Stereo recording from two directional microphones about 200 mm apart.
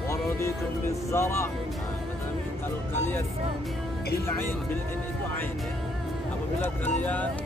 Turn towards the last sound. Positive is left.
turn(degrees=10)  # may be behind; listen again after turning